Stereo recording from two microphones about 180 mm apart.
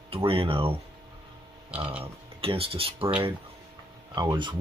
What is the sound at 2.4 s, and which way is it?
Speech, 30° right (ahead or behind).